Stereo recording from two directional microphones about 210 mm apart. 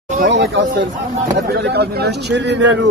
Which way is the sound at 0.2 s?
55° right (ahead or behind).